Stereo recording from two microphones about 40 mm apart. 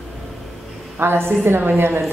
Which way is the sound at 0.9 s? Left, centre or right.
Right.